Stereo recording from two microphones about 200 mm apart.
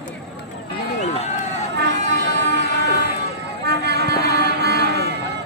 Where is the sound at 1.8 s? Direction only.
60° right (ahead or behind).